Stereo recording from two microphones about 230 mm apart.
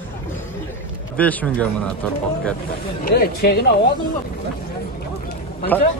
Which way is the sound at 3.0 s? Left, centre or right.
Left.